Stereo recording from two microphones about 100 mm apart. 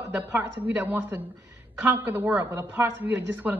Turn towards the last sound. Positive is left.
turn(degrees=-15)  # may be behind; listen again after turning